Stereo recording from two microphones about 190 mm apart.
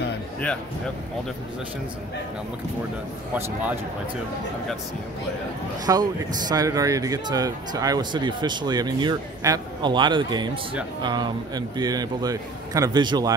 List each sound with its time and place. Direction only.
5.9 s speech: 15° right (ahead or behind)